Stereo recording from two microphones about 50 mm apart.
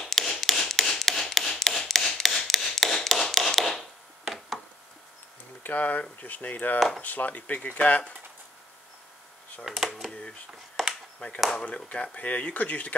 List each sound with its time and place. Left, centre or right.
0.0 s tap: centre
4.2 s a sound: centre
5.6 s speech: left
9.7 s speech: centre
11.1 s speech: left